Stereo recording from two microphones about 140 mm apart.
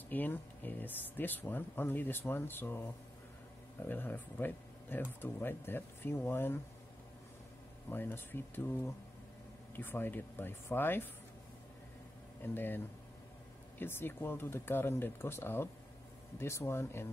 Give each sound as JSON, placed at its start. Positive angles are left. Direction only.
{"t": 0.1, "sound": "speech", "side_deg": 15}
{"t": 3.8, "sound": "speech", "side_deg": 15}
{"t": 7.9, "sound": "speech", "side_deg": 15}
{"t": 9.8, "sound": "speech", "side_deg": 15}
{"t": 12.5, "sound": "speech", "side_deg": 15}